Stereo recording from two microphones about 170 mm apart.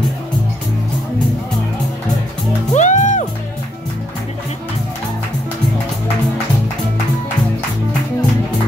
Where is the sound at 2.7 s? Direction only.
45° left (ahead or behind).